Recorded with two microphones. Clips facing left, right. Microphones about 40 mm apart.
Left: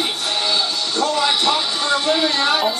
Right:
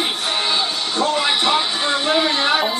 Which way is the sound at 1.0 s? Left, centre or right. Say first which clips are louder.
Even; right.